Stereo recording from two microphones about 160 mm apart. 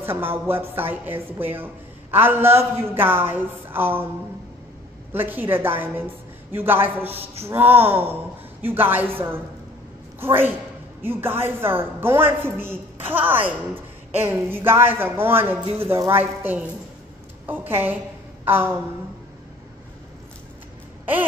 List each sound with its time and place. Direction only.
0.0 s a woman's voice: 15° right (ahead or behind)
5.1 s a woman's voice: 10° right (ahead or behind)
7.1 s speech: 40° right (ahead or behind)
7.4 s a woman's voice: 15° right (ahead or behind)
18.4 s a sound: 15° right (ahead or behind)